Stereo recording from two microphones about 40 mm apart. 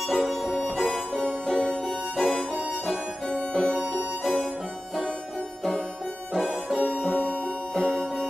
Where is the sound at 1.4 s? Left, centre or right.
Centre.